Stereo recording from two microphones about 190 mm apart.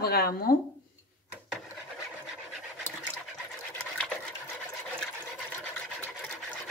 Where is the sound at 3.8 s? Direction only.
5° left (ahead or behind).